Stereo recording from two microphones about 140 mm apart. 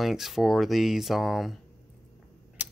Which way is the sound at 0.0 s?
Centre (ahead or behind).